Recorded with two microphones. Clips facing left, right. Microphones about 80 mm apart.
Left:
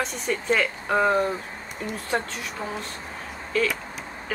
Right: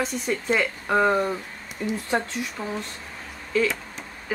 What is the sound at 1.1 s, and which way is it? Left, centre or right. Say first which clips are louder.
Speech: even; centre.